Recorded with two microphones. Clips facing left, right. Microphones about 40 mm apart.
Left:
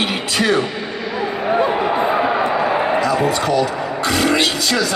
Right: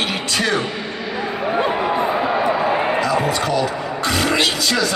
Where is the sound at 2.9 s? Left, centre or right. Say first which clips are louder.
Left 2 dB; centre.